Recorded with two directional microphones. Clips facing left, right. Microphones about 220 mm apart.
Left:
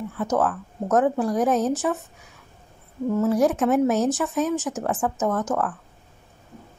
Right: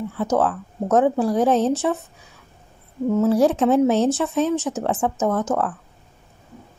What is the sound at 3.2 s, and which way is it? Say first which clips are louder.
A woman's voice: right 3 dB; 30° right (ahead or behind).